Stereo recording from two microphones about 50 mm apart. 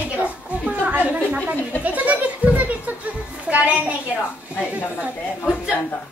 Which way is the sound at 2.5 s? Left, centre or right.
Right.